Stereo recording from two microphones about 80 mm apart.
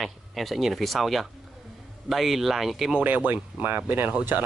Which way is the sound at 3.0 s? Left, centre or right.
Centre.